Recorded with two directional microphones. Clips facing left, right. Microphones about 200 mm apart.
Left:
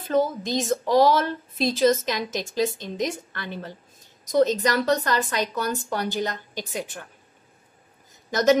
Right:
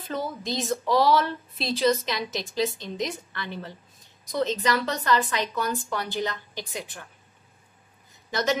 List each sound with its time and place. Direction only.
0.1 s a woman's voice: 45° left (ahead or behind)
8.3 s speech: 45° left (ahead or behind)